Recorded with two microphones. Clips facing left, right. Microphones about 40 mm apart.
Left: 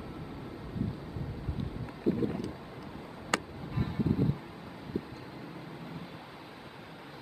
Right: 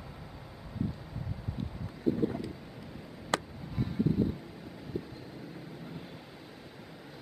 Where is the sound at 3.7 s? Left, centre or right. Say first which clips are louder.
Right 1 dB; centre.